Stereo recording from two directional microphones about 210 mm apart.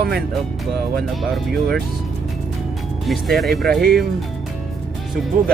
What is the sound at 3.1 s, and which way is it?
Speech, centre (ahead or behind).